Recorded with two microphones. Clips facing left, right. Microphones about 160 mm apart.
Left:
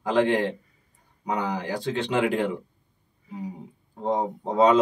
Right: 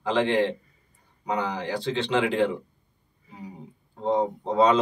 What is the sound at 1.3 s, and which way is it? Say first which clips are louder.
Speech: even; 45° left (ahead or behind).